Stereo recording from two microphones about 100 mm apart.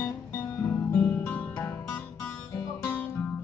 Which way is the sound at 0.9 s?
15° left (ahead or behind).